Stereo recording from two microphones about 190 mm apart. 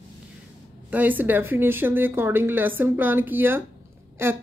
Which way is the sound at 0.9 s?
10° right (ahead or behind).